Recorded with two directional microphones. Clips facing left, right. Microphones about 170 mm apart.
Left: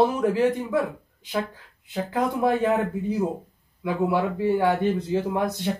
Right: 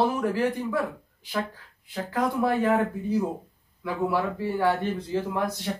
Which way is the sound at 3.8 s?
20° left (ahead or behind).